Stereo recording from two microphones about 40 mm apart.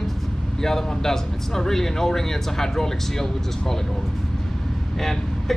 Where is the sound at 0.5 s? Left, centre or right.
Centre.